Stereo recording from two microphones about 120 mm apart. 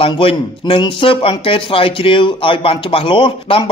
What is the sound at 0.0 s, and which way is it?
Speech, 50° left (ahead or behind).